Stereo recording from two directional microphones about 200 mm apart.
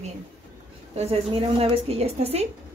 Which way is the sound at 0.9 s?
30° right (ahead or behind).